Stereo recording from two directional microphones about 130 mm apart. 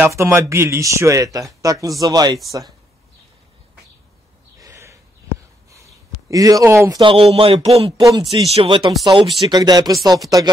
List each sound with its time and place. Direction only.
0.0 s speech: 20° right (ahead or behind)
4.6 s a sound: 25° right (ahead or behind)
7.0 s speech: 45° right (ahead or behind)
8.0 s speech: 30° right (ahead or behind)